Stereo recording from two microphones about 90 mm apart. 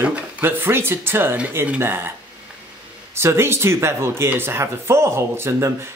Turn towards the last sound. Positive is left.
turn(degrees=-30)  # may be behind; listen again after turning